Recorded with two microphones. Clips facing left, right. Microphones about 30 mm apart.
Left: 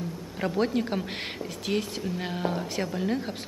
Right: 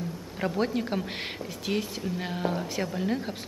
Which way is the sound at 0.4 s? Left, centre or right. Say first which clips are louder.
Left 2 dB; centre.